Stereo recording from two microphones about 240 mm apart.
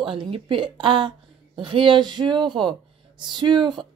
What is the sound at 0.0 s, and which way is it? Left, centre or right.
A woman's voice, right.